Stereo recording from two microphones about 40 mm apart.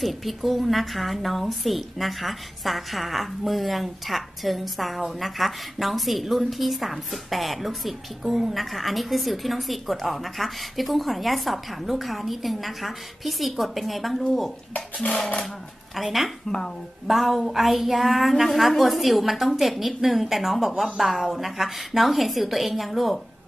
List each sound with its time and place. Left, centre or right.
0.0 s speech: centre
15.1 s dishes: left
16.0 s speech: centre
16.4 s speech: centre
17.1 s speech: centre